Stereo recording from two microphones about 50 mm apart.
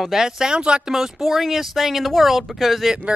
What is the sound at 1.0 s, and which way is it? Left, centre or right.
Speech, centre.